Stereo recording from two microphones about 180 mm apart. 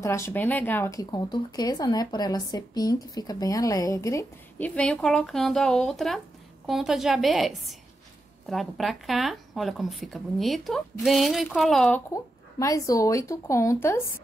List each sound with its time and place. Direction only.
0.0 s speech: 15° left (ahead or behind)
12.1 s speech: 15° left (ahead or behind)